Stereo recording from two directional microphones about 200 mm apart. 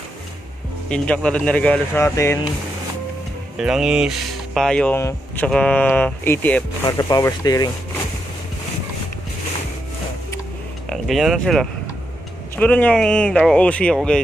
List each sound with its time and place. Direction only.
0.8 s speech: 5° left (ahead or behind)
3.5 s speech: 5° right (ahead or behind); by 7.7 s 20° left (ahead or behind)
10.9 s speech: centre (ahead or behind)